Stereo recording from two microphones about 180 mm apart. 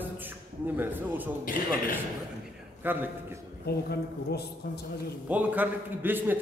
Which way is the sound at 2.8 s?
10° right (ahead or behind).